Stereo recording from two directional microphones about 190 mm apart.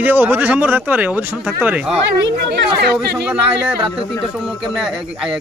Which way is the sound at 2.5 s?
55° right (ahead or behind).